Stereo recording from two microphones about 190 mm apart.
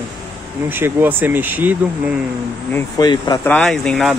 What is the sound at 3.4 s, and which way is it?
Speech, 5° left (ahead or behind).